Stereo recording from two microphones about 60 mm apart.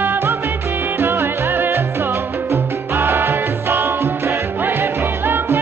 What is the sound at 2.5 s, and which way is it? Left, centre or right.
Music, right.